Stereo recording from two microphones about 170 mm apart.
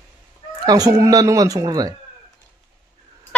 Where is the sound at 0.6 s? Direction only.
20° right (ahead or behind).